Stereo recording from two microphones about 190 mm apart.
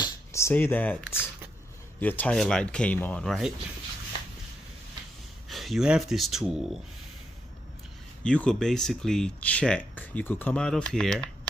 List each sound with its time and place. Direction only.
0.0 s speech: 15° left (ahead or behind)
5.5 s speech: centre (ahead or behind)
8.2 s speech: 5° left (ahead or behind)